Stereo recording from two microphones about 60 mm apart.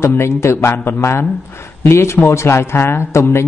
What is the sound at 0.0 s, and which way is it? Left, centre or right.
A man's voice, left.